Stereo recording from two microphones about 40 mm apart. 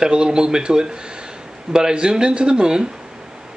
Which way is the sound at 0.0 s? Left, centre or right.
Right.